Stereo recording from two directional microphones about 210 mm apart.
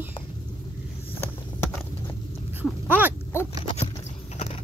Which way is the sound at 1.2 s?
10° left (ahead or behind).